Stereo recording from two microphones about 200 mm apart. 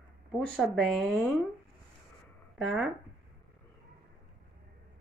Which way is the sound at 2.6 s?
Centre (ahead or behind).